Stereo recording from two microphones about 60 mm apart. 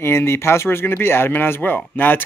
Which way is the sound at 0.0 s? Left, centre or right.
Left.